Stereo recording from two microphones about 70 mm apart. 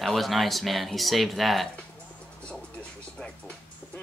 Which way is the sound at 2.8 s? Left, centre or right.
Centre.